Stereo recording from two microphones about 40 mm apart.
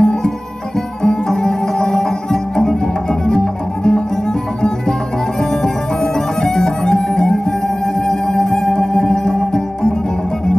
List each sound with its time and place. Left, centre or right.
0.0 s music: centre